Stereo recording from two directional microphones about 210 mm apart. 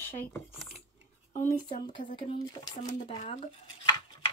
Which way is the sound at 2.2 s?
20° left (ahead or behind).